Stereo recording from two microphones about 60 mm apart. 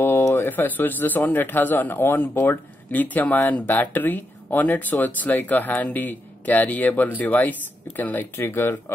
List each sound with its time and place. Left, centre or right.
0.3 s speech: left